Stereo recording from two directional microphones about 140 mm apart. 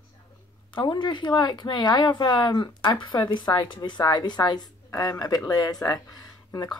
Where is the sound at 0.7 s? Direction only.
30° left (ahead or behind).